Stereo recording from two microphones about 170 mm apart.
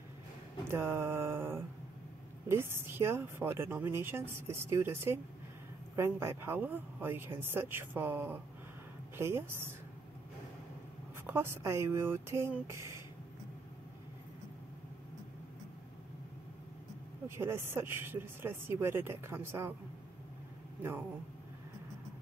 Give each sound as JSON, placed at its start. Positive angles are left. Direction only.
{"t": 0.7, "sound": "a woman's voice", "side_deg": -15}
{"t": 11.2, "sound": "a woman's voice", "side_deg": -15}
{"t": 17.4, "sound": "a woman's voice", "side_deg": -15}